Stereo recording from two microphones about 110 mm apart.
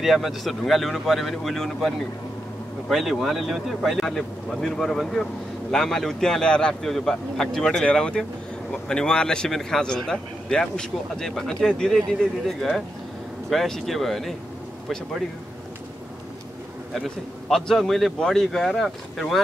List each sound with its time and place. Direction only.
0.0 s speech: centre (ahead or behind)
16.9 s speech: centre (ahead or behind)